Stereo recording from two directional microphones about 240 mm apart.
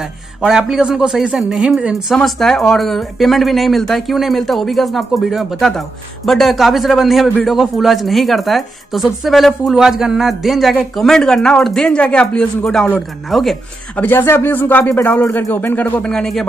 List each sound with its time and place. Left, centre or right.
0.0 s speech: centre